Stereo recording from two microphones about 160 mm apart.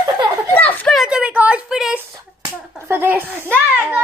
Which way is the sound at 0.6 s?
10° left (ahead or behind).